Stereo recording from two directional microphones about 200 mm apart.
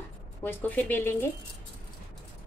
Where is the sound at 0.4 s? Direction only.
10° left (ahead or behind).